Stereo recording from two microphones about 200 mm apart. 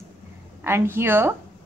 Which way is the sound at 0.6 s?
10° right (ahead or behind).